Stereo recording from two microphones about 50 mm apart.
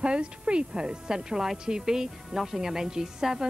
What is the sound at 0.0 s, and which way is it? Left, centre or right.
Speech, right.